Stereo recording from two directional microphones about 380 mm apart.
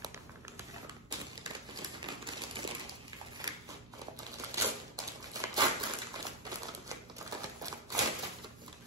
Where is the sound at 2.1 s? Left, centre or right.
Centre.